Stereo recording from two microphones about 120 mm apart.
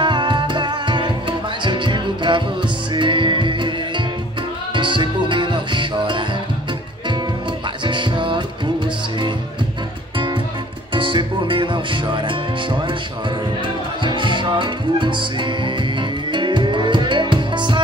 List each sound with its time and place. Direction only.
0.0 s music: 40° right (ahead or behind)
7.8 s music: 40° right (ahead or behind)
14.0 s music: 40° right (ahead or behind)